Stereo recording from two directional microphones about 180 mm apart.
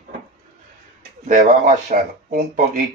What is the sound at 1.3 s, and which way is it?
Speech, 45° right (ahead or behind).